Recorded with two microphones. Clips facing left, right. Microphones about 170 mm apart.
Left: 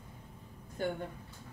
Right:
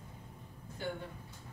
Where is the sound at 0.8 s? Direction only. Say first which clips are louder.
Left 5 dB; 50° left (ahead or behind).